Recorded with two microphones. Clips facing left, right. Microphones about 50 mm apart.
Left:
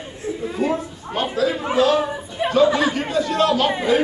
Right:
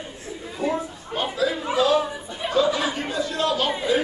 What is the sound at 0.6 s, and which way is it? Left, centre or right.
Speech, left.